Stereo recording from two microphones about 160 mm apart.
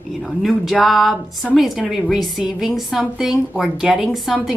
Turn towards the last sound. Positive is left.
turn(degrees=0)  # may be behind; listen again after turning